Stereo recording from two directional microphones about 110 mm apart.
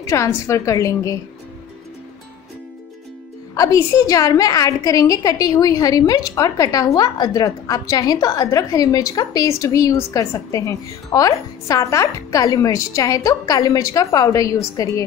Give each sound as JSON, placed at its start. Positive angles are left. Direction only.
{"t": 0.0, "sound": "a woman's voice", "side_deg": 30}
{"t": 3.5, "sound": "a woman's voice", "side_deg": 30}